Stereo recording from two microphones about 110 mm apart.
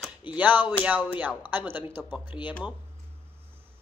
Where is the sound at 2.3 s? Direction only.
45° left (ahead or behind).